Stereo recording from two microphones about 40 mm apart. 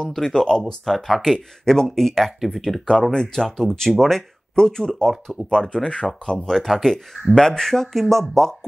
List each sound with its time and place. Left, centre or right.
0.0 s speech: centre
0.8 s speech: centre
2.9 s speech: centre
4.6 s speech: centre
5.1 s speech: centre
5.5 s speech: centre
6.6 s speech: centre